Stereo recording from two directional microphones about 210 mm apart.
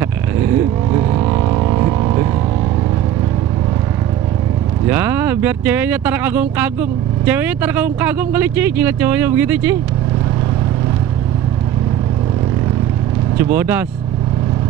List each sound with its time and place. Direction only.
0.9 s vehicle: 20° right (ahead or behind)
4.8 s speech: 10° right (ahead or behind)
13.4 s speech: 10° right (ahead or behind)